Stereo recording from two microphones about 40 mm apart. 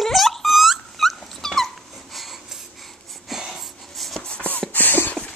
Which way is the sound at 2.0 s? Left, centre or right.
Centre.